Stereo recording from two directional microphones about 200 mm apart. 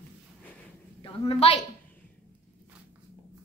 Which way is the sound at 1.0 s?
30° left (ahead or behind).